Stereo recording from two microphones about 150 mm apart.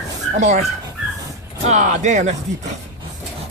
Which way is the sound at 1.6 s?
50° right (ahead or behind).